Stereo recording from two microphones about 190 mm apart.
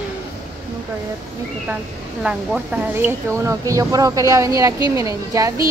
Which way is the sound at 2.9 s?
15° right (ahead or behind).